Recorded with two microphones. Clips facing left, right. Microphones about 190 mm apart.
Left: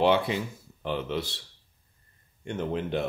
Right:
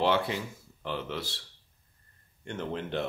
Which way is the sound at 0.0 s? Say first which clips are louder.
Left 4 dB; 20° left (ahead or behind).